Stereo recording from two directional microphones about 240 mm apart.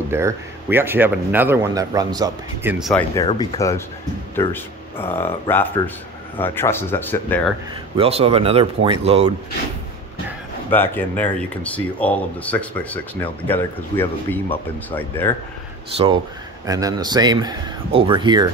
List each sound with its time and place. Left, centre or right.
0.1 s speech: centre
3.2 s speech: centre
7.9 s speech: right
10.7 s speech: centre
16.6 s speech: centre